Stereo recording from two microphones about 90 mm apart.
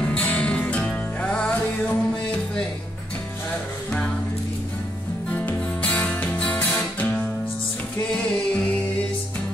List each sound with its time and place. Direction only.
0.0 s music: 15° left (ahead or behind)
5.3 s music: 15° left (ahead or behind)